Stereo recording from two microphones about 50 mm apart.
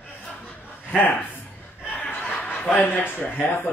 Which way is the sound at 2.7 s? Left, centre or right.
Left.